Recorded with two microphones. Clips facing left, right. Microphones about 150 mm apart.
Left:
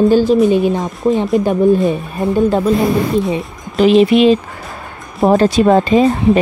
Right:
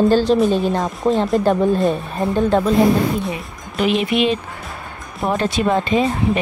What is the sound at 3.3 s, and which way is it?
Speech, 30° left (ahead or behind).